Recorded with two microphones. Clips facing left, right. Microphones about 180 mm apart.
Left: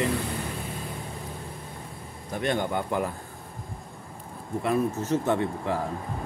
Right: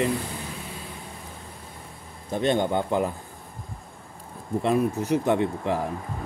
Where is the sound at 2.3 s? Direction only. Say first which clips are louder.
Right 4 dB; 25° right (ahead or behind).